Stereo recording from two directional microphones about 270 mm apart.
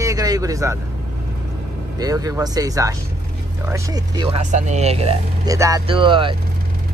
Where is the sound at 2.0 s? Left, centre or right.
Centre.